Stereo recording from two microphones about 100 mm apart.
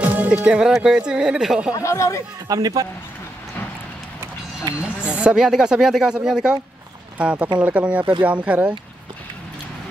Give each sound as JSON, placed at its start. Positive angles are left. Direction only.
{"t": 0.0, "sound": "speech", "side_deg": -15}
{"t": 1.8, "sound": "speech", "side_deg": 30}
{"t": 2.4, "sound": "speech", "side_deg": -40}
{"t": 4.8, "sound": "speech", "side_deg": -10}